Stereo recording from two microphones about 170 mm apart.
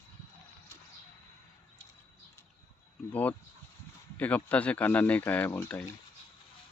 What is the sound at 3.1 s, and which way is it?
Speech, 10° left (ahead or behind).